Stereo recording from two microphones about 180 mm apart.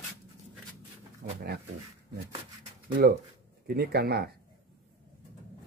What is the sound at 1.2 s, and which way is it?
Speech, 60° right (ahead or behind).